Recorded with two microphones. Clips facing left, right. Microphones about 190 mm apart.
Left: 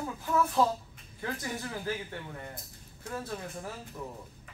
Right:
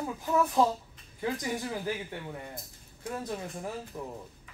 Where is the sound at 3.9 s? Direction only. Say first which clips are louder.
Right 2 dB; 25° right (ahead or behind).